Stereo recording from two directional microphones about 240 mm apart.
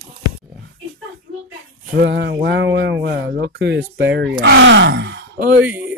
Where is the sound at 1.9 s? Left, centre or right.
Right.